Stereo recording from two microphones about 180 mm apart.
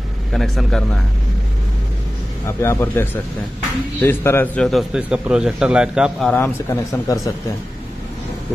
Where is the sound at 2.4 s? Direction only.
15° left (ahead or behind).